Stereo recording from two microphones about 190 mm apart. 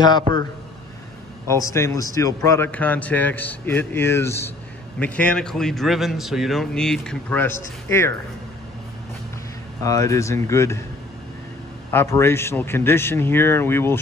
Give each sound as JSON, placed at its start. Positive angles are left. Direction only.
{"t": 1.5, "sound": "a man's voice", "side_deg": 15}
{"t": 9.8, "sound": "a man's voice", "side_deg": 15}
{"t": 11.9, "sound": "a man's voice", "side_deg": 10}